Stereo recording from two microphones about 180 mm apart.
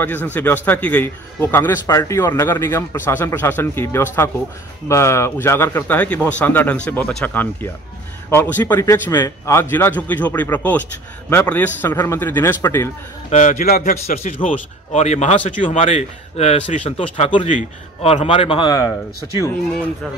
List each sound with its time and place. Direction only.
0.0 s a man's voice: 10° left (ahead or behind)
13.3 s a man's voice: 45° left (ahead or behind)
17.5 s a man's voice: 40° left (ahead or behind); by 18.9 s 25° left (ahead or behind)